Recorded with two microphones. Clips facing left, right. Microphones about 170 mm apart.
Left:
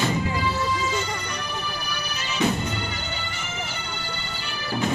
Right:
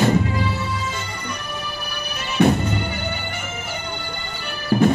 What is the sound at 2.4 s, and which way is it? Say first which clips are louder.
Music: right 7 dB; 60° right (ahead or behind).